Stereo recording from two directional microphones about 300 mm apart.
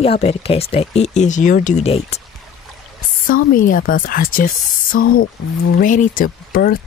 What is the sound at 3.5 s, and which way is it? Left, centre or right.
Speech, left.